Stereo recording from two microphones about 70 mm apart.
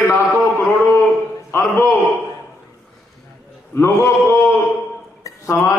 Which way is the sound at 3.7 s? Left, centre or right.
Left.